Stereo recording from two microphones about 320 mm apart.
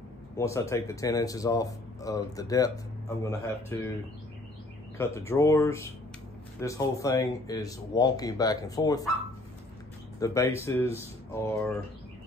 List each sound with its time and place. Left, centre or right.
0.4 s speech: centre
4.9 s speech: centre
10.1 s speech: centre